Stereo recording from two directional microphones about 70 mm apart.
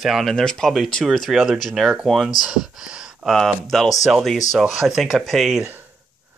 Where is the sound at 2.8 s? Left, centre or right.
Centre.